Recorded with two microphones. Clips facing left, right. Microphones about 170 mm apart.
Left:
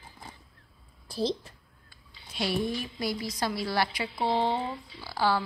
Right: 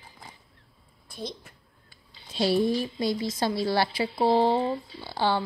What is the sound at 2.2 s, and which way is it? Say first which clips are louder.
A woman's voice: right 6 dB; 30° right (ahead or behind).